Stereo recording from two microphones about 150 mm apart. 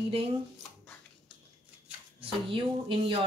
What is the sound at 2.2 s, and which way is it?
Speech, 35° right (ahead or behind).